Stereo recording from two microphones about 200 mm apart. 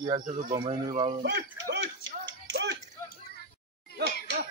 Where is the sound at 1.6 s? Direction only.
60° right (ahead or behind).